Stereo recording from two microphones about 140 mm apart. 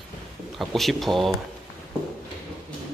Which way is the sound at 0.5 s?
Centre (ahead or behind).